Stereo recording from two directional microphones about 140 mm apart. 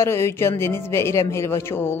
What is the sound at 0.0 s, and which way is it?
Speech, 20° left (ahead or behind).